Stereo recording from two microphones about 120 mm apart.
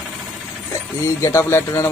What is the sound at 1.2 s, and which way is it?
Speech, 25° left (ahead or behind).